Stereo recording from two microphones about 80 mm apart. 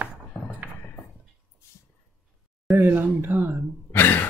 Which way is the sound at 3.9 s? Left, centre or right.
Left.